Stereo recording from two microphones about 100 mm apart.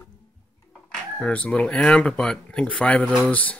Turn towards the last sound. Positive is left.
turn(degrees=15)  # may be behind; listen again after turning